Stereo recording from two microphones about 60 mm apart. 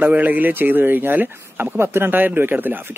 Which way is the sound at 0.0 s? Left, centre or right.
Right.